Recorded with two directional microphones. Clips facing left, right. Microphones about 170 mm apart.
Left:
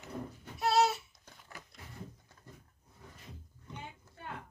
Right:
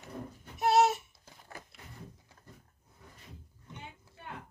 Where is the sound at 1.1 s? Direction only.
5° right (ahead or behind).